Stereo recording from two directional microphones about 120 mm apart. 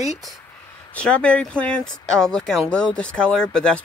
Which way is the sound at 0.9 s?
10° left (ahead or behind).